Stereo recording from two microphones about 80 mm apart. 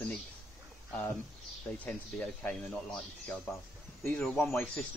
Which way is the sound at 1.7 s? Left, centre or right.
Centre.